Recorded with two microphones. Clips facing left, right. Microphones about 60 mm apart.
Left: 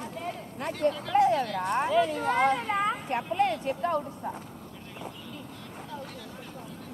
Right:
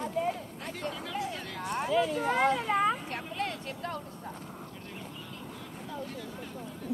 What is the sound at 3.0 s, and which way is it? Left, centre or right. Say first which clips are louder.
Speech: left 8 dB; centre.